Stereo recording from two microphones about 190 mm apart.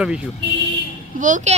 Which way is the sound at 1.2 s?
40° right (ahead or behind).